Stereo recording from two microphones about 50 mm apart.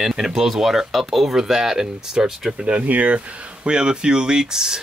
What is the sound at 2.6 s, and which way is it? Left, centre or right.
Speech, right.